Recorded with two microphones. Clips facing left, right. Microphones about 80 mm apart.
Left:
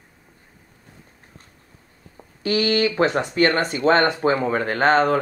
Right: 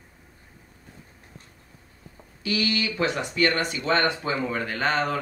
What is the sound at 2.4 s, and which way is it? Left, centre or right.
Speech, left.